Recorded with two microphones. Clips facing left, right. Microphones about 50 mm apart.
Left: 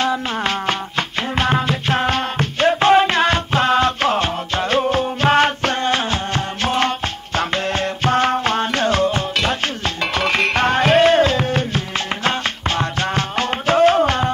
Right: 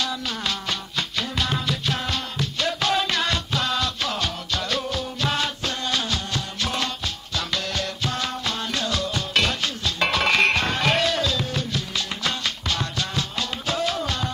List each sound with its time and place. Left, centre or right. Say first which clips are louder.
0.0 s music: left 8 dB; left
10.5 s music: left 7 dB; left